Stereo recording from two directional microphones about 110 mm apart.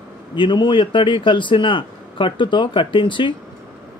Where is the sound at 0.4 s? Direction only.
45° left (ahead or behind).